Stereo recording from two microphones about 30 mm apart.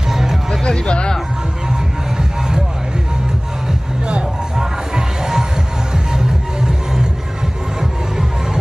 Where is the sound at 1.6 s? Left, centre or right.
Right.